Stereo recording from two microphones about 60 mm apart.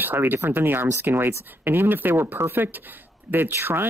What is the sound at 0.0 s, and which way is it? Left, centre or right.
Speech, right.